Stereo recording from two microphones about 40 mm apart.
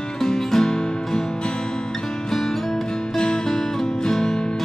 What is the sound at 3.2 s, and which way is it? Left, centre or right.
Music, centre.